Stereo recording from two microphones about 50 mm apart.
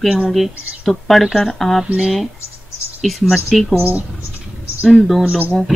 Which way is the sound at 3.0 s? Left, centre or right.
Centre.